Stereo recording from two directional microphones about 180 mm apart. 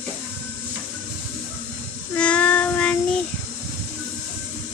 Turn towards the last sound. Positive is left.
turn(degrees=5)  # may be behind; listen again after turning